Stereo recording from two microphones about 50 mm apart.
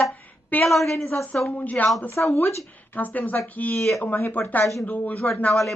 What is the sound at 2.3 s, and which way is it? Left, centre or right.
Speech, left.